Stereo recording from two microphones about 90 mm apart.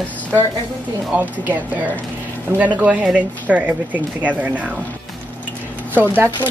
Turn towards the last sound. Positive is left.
turn(degrees=-25)  # may be behind; listen again after turning